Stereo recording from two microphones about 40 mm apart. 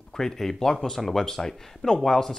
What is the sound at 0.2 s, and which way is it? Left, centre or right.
Speech, centre.